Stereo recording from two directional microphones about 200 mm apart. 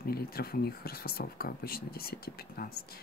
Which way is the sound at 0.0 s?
50° left (ahead or behind).